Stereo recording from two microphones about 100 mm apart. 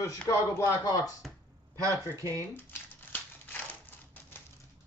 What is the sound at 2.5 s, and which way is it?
Crumpling, 20° left (ahead or behind).